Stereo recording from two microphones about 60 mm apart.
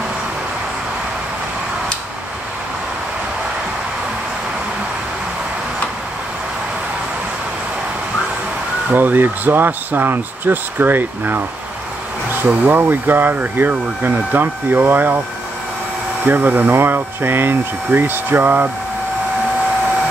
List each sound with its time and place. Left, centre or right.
8.9 s speech: right
12.4 s speech: right
16.3 s speech: right